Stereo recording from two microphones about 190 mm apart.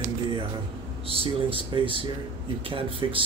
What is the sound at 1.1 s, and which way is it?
Speech, 30° right (ahead or behind).